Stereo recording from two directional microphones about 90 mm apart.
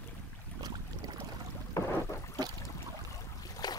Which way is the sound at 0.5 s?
50° right (ahead or behind).